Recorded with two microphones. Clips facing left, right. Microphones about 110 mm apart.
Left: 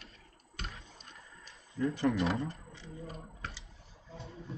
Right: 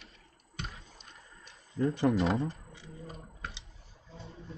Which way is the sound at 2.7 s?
15° right (ahead or behind).